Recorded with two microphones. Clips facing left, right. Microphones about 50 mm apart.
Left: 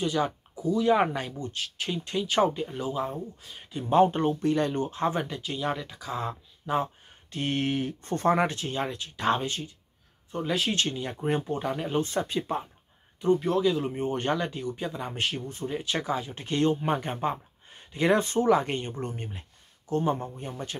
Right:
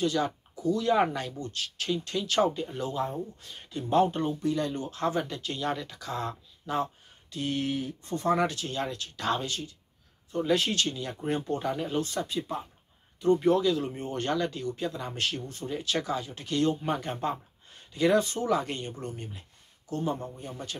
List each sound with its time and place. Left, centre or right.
0.0 s speech: centre
3.8 s speech: left
4.2 s speech: left
4.8 s speech: left
5.3 s speech: centre
7.2 s speech: left
8.3 s speech: left
9.3 s speech: left
10.4 s speech: centre
10.7 s speech: left
11.4 s speech: centre; by 12.6 s left
13.2 s a man's voice: left